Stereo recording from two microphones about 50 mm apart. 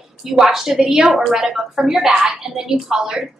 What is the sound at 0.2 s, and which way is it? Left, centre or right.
A woman's voice, centre.